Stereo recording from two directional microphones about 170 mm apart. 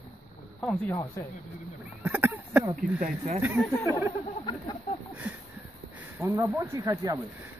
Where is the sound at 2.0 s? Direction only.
10° right (ahead or behind).